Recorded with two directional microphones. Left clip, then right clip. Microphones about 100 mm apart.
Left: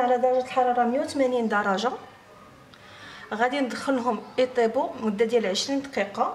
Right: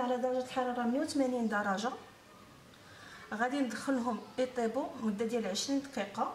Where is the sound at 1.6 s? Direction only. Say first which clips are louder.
Left 9 dB; 10° left (ahead or behind).